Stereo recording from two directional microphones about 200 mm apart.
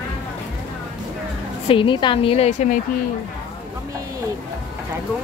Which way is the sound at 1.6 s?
25° left (ahead or behind).